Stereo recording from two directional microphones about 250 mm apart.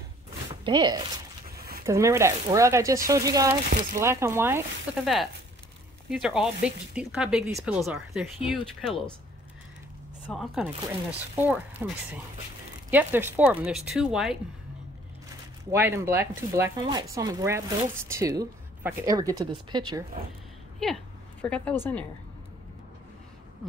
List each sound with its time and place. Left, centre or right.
0.7 s speech: centre
10.2 s speech: centre
12.9 s speech: centre
15.7 s speech: centre
20.8 s a woman's voice: centre